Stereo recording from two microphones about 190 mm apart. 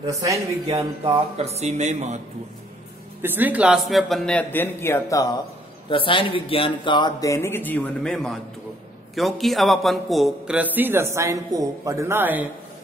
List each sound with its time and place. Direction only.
0.0 s speech: 20° right (ahead or behind)
1.0 s speech: 30° right (ahead or behind)
3.2 s a man's voice: 10° right (ahead or behind)